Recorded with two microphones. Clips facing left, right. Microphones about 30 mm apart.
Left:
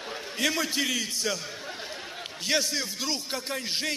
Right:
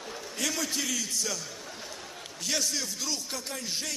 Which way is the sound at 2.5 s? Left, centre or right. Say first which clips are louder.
Left 4 dB; left.